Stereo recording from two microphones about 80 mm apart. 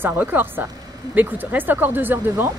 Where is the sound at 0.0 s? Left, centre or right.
Right.